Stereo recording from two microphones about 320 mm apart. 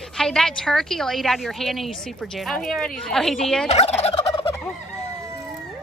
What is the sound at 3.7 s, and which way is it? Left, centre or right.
Fowl, centre.